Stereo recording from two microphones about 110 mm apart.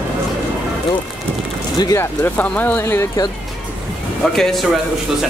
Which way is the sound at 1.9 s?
20° left (ahead or behind).